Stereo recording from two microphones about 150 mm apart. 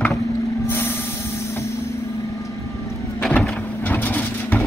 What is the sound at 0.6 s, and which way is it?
Vehicle, 15° left (ahead or behind).